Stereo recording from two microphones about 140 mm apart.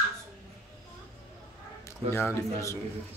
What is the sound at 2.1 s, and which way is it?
Speech, 20° left (ahead or behind).